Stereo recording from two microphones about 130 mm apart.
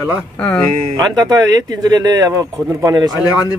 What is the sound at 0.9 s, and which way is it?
Speech, 30° right (ahead or behind).